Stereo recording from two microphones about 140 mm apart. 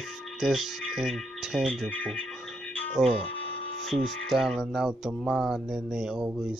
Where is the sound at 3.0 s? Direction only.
5° right (ahead or behind).